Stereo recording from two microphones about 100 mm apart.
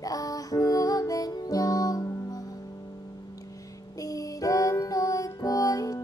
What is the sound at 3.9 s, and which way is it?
Music, 35° left (ahead or behind).